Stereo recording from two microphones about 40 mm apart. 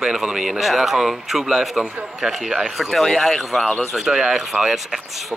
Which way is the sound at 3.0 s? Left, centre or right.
Centre.